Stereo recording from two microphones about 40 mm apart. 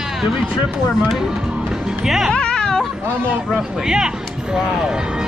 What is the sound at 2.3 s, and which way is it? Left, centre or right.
Music, left.